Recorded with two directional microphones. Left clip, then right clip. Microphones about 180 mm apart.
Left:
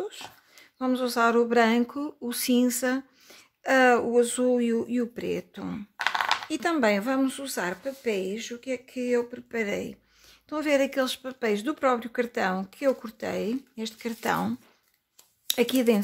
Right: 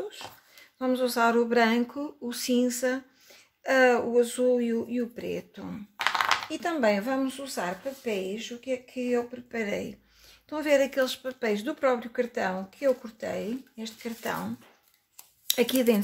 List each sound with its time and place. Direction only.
0.7 s a sound: 30° left (ahead or behind)
6.5 s speech: 40° left (ahead or behind); by 14.5 s 65° left (ahead or behind)
15.4 s speech: 25° left (ahead or behind)